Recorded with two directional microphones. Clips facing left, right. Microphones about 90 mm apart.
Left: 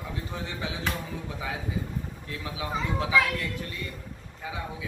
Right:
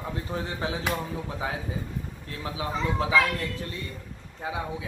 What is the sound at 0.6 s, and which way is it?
Speech, 40° right (ahead or behind).